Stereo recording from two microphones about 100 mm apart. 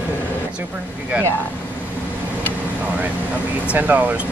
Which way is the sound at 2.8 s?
15° right (ahead or behind).